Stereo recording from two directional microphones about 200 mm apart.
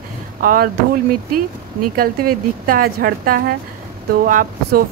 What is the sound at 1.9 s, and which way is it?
Speech, 45° right (ahead or behind).